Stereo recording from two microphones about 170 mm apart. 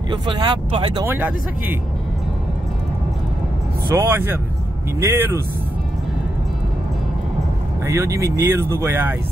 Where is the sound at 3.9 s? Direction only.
15° right (ahead or behind).